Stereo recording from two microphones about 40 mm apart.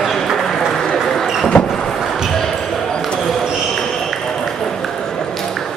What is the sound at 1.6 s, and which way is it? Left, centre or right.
Vehicle, centre.